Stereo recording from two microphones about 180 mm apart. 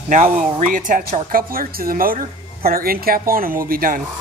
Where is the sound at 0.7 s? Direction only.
50° right (ahead or behind).